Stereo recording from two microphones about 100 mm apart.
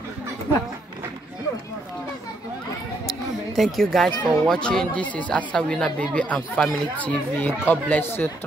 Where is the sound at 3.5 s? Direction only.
Centre (ahead or behind).